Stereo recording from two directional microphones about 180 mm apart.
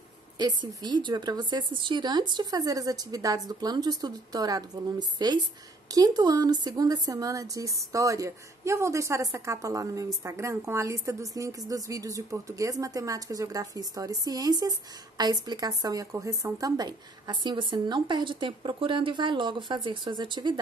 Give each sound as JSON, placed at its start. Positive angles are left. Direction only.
{"t": 0.4, "sound": "a woman's voice", "side_deg": -25}